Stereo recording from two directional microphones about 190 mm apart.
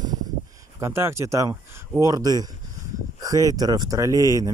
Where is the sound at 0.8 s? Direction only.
15° right (ahead or behind).